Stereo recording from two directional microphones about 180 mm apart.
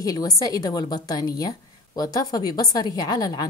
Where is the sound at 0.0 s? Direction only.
20° left (ahead or behind).